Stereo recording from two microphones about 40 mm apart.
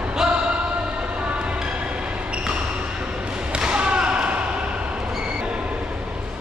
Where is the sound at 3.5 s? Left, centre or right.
Right.